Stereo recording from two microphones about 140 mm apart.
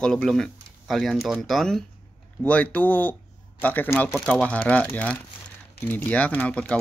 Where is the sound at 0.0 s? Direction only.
5° left (ahead or behind).